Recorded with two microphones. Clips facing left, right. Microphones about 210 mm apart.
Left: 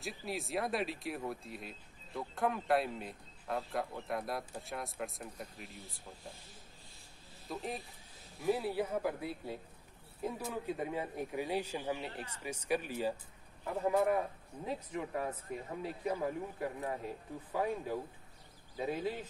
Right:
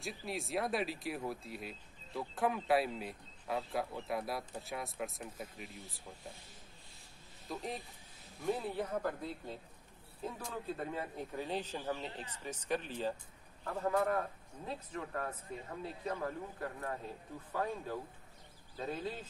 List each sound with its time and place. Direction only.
0.0 s speech: centre (ahead or behind)
7.4 s a man's voice: centre (ahead or behind)